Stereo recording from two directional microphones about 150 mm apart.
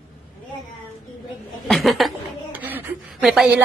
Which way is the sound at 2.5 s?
10° right (ahead or behind).